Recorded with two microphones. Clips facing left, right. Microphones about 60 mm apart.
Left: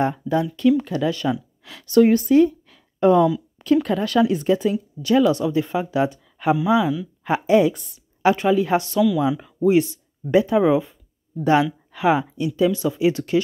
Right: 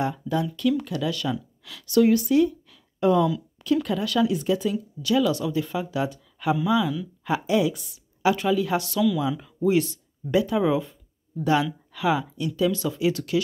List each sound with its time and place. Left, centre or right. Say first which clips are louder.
0.0 s a woman's voice: left 5 dB; left